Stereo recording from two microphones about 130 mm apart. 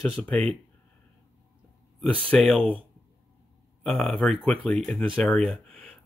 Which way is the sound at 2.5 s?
5° left (ahead or behind).